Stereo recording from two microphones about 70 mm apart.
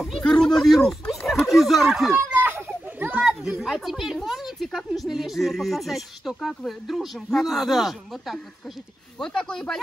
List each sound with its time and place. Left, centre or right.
0.0 s a sound: centre
2.1 s children playing: right
3.3 s speech: centre
9.2 s speech: centre